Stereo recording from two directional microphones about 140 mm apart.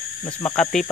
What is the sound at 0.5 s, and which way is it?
Speech, 5° left (ahead or behind).